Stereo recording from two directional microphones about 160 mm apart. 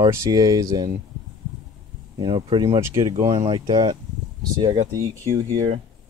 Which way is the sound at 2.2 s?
30° right (ahead or behind).